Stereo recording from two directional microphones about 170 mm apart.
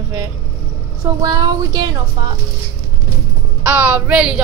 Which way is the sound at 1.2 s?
25° right (ahead or behind).